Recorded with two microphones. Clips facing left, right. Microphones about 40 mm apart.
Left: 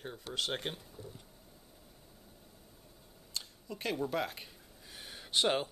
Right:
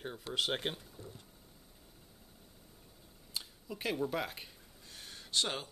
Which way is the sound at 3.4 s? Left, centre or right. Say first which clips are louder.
Even; centre.